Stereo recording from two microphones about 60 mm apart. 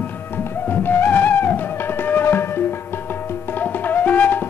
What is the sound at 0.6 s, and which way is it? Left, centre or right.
Music, left.